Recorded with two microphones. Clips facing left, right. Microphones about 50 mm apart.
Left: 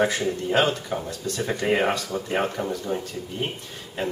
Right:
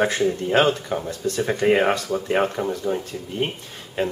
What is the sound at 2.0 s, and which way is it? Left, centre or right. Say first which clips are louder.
Speech: right 4 dB; centre.